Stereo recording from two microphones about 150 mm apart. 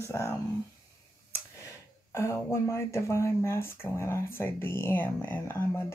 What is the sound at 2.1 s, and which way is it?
Speech, 15° left (ahead or behind).